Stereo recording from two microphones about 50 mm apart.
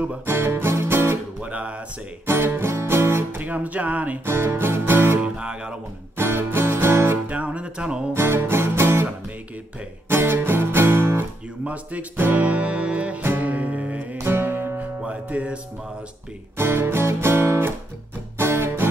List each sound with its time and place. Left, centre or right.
0.3 s music: right
1.4 s music: right
2.2 s speech: right
3.5 s music: right
4.3 s music: right
5.2 s music: centre
6.1 s music: right
7.2 s music: right
8.1 s music: right
11.6 s music: right
14.2 s music: right
14.8 s music: right
16.5 s music: right